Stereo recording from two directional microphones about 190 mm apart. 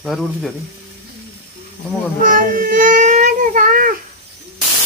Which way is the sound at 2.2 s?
45° right (ahead or behind).